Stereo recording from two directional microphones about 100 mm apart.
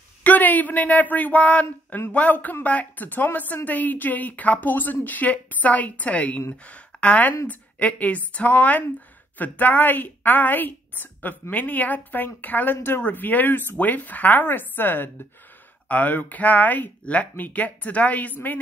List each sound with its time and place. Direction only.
0.2 s a woman's voice: 15° left (ahead or behind)